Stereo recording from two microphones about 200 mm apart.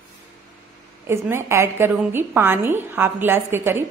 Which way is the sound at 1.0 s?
10° right (ahead or behind).